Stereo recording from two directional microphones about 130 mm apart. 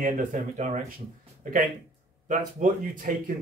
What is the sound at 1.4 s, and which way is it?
Speech, 90° right.